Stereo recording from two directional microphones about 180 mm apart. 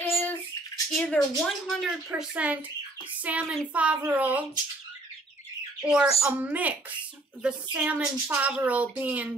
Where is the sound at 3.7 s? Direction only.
10° right (ahead or behind).